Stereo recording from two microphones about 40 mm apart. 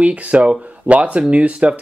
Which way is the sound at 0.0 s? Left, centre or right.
Right.